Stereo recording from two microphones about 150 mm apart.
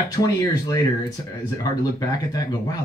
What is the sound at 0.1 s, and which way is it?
Speech, 20° left (ahead or behind).